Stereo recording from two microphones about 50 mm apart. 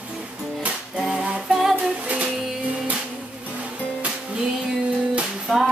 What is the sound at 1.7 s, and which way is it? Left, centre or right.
Music, right.